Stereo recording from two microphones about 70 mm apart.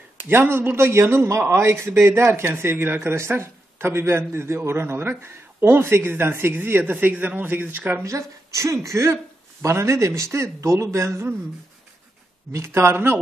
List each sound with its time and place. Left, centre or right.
0.3 s speech: right
8.0 s speech: right
12.5 s speech: right